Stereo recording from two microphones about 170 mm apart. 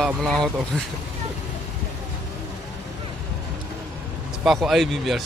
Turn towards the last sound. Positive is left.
turn(degrees=0)  # may be behind; listen again after turning